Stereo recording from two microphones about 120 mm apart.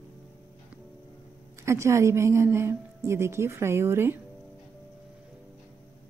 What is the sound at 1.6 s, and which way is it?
A woman's voice, 25° right (ahead or behind).